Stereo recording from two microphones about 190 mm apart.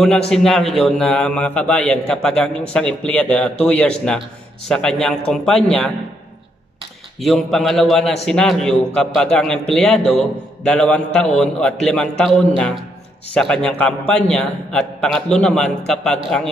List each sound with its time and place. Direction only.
0.3 s a man's voice: 5° left (ahead or behind)
7.2 s a man's voice: centre (ahead or behind)